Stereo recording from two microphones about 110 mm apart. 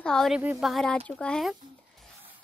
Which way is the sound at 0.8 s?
10° left (ahead or behind).